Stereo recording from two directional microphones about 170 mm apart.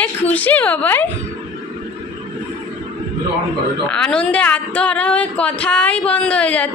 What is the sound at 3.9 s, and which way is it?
A woman's voice, 5° left (ahead or behind).